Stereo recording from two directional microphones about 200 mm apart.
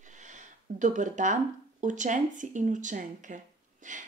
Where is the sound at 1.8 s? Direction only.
40° right (ahead or behind).